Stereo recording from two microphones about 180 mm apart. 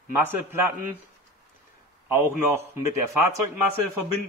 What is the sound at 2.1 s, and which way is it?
Speech, 15° right (ahead or behind).